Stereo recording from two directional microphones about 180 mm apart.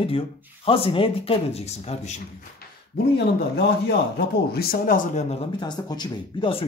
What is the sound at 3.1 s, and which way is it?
A man's voice, 60° left (ahead or behind).